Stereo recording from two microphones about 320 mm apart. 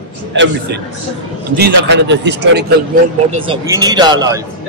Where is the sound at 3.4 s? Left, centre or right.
Centre.